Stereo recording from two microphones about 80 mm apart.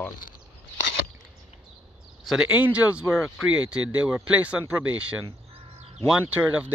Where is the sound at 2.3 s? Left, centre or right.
Centre.